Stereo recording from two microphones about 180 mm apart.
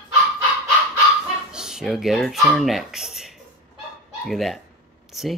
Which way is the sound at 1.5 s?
5° right (ahead or behind).